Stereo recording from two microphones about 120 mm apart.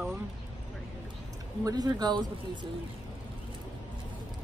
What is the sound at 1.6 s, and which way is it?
A man's voice, 30° right (ahead or behind).